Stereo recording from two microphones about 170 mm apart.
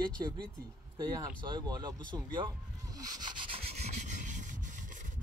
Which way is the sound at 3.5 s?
35° right (ahead or behind).